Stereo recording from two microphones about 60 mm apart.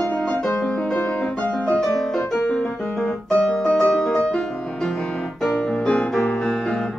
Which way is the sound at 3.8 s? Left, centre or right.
Centre.